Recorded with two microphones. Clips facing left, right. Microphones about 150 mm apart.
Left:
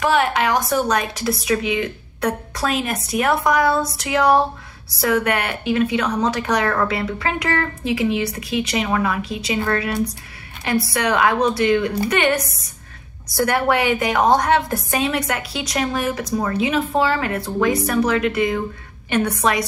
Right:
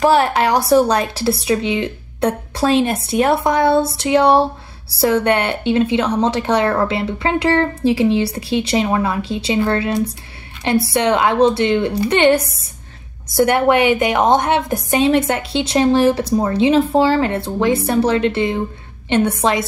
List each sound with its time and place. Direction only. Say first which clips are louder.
0.0 s a woman's voice: right 4 dB; 35° right (ahead or behind)